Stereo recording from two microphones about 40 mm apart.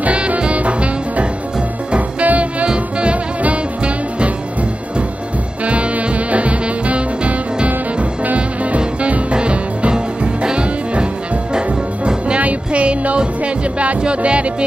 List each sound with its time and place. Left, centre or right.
0.0 s music: right
5.7 s music: right
12.4 s music: right